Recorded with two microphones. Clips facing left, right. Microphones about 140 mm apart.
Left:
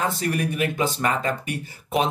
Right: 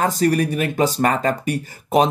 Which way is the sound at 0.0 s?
40° right (ahead or behind).